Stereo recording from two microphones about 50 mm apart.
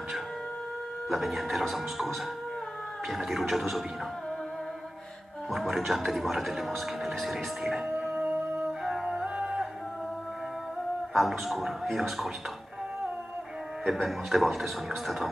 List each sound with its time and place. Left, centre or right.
1.0 s speech: centre
3.1 s speech: centre
5.5 s speech: centre
8.8 s music: centre
11.1 s speech: centre
13.8 s speech: centre